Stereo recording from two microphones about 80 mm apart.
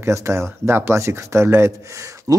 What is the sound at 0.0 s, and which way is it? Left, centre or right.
Speech, right.